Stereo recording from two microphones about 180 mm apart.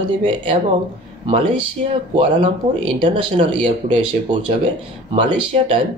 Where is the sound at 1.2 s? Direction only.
30° right (ahead or behind).